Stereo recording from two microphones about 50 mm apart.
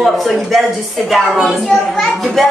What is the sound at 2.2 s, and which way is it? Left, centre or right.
Speech, centre.